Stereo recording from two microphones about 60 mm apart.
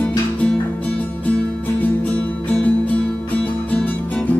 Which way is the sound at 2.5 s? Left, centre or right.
Left.